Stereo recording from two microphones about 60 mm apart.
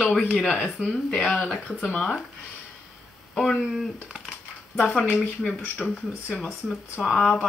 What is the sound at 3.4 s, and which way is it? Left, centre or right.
Speech, centre.